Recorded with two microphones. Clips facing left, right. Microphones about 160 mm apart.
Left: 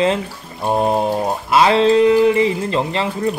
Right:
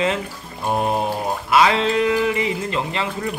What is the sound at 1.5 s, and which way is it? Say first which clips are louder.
Speech: left 5 dB; 30° left (ahead or behind).